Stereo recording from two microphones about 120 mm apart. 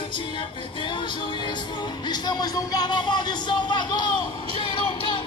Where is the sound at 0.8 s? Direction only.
40° left (ahead or behind).